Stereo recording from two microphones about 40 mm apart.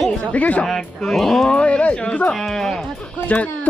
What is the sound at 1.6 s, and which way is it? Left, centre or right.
Speech, left.